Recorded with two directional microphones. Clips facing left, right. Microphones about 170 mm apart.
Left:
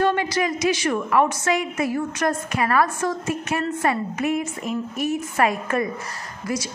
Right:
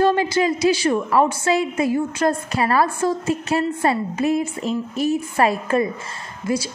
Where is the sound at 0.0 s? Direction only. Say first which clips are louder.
Right 4 dB; 30° right (ahead or behind).